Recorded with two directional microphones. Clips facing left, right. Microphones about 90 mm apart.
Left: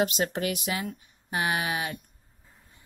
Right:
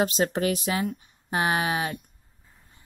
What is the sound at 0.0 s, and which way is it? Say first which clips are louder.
A woman's voice: right 3 dB; 35° right (ahead or behind).